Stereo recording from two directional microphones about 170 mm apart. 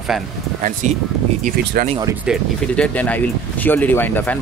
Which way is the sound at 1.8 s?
65° right (ahead or behind).